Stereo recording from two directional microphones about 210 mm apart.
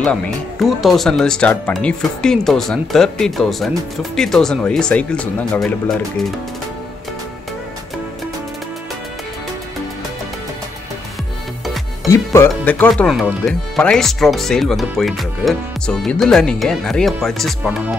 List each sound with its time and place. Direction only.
0.0 s speech: 5° left (ahead or behind)
11.6 s music: centre (ahead or behind)
12.1 s speech: 10° left (ahead or behind)